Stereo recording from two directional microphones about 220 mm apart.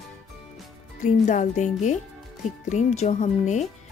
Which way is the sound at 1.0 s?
35° left (ahead or behind).